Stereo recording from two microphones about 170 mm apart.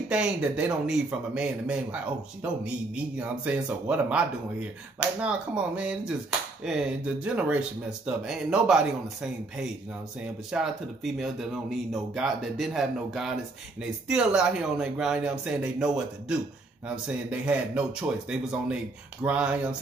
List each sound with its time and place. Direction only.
0.1 s a man's voice: 5° right (ahead or behind)